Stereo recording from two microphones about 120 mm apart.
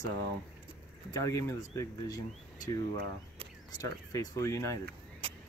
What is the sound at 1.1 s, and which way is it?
Speech, 25° left (ahead or behind).